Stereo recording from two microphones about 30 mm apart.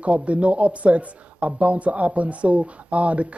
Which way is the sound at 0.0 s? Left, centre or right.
Right.